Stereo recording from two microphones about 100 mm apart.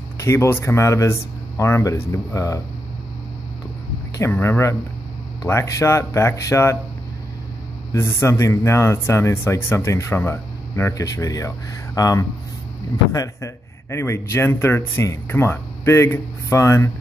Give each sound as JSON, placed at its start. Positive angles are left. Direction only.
{"t": 0.2, "sound": "speech", "side_deg": 30}
{"t": 4.2, "sound": "speech", "side_deg": 25}
{"t": 7.9, "sound": "speech", "side_deg": 30}